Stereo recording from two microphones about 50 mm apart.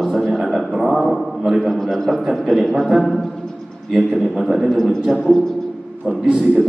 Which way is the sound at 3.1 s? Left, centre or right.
Centre.